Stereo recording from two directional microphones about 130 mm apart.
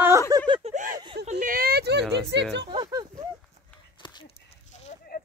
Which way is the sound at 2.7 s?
35° right (ahead or behind).